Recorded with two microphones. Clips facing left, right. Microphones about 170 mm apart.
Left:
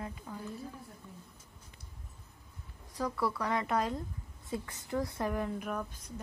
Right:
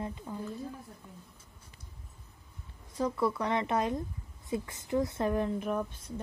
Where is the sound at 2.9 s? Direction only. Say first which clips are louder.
Right 4 dB; 20° right (ahead or behind).